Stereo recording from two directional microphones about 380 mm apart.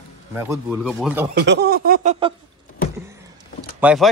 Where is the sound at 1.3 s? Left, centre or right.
Right.